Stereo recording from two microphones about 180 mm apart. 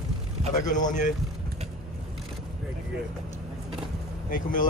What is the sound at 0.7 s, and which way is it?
Speech, 45° left (ahead or behind).